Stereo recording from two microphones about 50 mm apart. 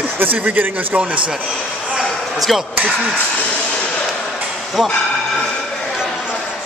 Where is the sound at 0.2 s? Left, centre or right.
Right.